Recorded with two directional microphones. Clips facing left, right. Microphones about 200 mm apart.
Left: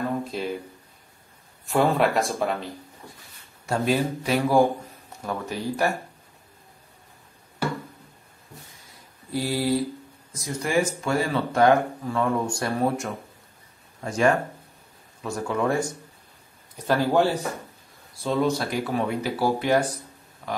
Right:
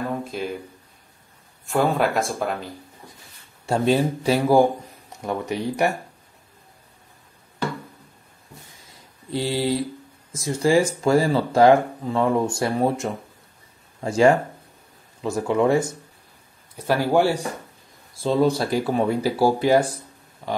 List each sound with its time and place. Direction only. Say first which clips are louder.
0.2 s speech: even; centre (ahead or behind)
1.7 s speech: even; centre (ahead or behind)
3.6 s speech: right 4 dB; 30° right (ahead or behind)
5.2 s speech: right 4 dB; 20° right (ahead or behind)
9.3 s speech: right 1 dB; 25° right (ahead or behind)
16.7 s speech: right 2 dB; 10° right (ahead or behind)
18.2 s speech: right 4 dB; 30° right (ahead or behind)